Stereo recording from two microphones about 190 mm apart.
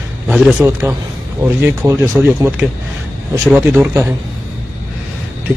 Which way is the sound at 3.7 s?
10° right (ahead or behind).